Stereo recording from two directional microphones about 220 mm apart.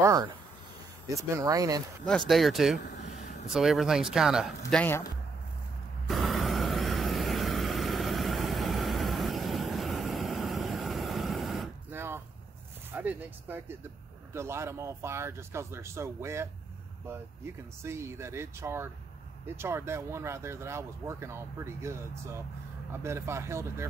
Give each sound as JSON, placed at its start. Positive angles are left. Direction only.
{"t": 0.0, "sound": "a sound", "side_deg": -15}
{"t": 1.0, "sound": "speech", "side_deg": -15}
{"t": 2.0, "sound": "speech", "side_deg": 0}
{"t": 6.0, "sound": "vehicle", "side_deg": 0}
{"t": 12.9, "sound": "speech", "side_deg": -10}
{"t": 17.8, "sound": "speech", "side_deg": -10}